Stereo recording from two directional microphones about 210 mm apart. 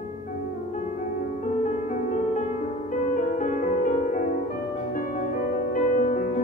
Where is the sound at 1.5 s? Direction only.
35° left (ahead or behind).